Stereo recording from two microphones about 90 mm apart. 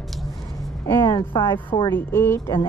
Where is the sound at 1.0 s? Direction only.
50° left (ahead or behind).